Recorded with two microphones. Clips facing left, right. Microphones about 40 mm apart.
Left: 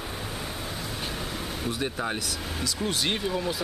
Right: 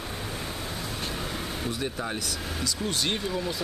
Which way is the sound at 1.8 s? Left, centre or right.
Centre.